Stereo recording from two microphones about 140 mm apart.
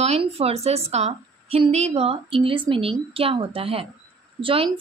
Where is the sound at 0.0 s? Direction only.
45° right (ahead or behind).